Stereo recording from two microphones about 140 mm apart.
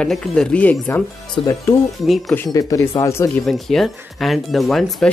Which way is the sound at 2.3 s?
20° left (ahead or behind).